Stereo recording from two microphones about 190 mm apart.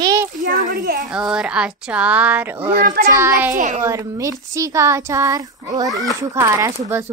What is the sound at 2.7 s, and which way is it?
A child's voice, 50° right (ahead or behind).